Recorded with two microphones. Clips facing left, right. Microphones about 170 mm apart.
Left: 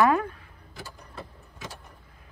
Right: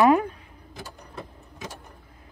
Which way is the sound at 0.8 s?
20° right (ahead or behind).